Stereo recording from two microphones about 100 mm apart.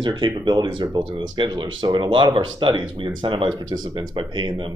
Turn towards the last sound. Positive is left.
turn(degrees=-50)  # may be behind; listen again after turning